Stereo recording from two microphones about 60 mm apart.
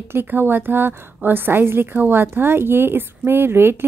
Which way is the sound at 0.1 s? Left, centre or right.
Right.